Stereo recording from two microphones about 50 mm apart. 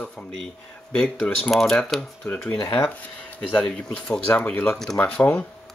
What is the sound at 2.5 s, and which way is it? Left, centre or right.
Speech, left.